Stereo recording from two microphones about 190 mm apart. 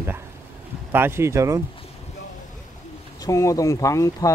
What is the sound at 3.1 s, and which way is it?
Speech, 15° left (ahead or behind).